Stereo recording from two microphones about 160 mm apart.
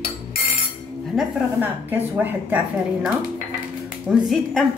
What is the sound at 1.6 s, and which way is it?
A woman's voice, 10° right (ahead or behind).